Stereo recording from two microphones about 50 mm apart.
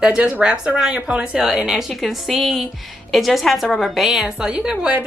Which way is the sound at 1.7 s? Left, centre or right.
Centre.